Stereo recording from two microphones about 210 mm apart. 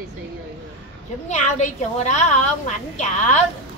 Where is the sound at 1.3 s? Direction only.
35° left (ahead or behind).